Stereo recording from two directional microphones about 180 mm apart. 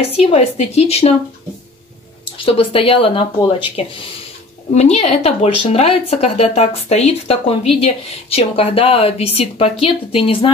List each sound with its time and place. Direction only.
0.1 s speech: 35° left (ahead or behind)
2.3 s speech: 30° left (ahead or behind)
4.7 s speech: 40° left (ahead or behind)